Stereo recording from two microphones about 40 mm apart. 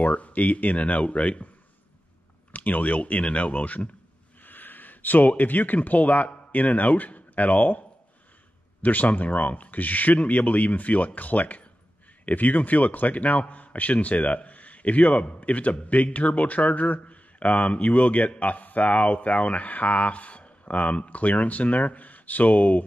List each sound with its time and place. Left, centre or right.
0.0 s speech: left
2.5 s speech: left
4.4 s a sound: left
5.4 s speech: left
8.8 s speech: left